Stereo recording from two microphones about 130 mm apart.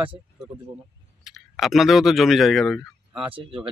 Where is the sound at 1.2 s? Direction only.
Centre (ahead or behind).